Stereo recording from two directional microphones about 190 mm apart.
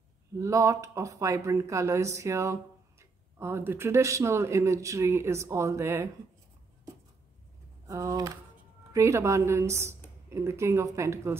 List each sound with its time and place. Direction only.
0.4 s speech: 15° right (ahead or behind)
7.8 s speech: 15° right (ahead or behind)